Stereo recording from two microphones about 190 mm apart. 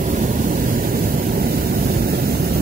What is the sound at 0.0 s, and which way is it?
Vehicle, 45° right (ahead or behind).